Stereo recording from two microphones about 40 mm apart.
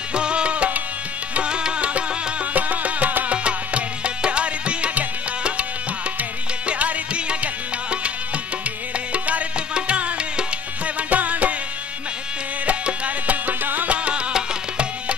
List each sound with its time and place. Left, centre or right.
0.1 s tabla: right
1.3 s music: right
2.5 s music: right
3.4 s music: right
6.7 s music: right
9.1 s music: right
11.0 s music: right
12.6 s music: right
14.3 s music: right